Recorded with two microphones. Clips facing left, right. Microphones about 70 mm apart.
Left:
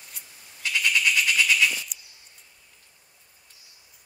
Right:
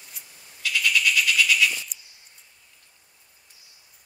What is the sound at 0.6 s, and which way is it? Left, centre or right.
Frog, left.